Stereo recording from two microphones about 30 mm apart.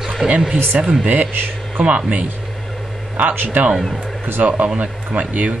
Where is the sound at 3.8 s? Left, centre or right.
Centre.